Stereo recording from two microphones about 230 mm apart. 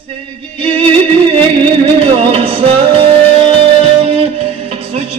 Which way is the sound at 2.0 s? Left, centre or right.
Right.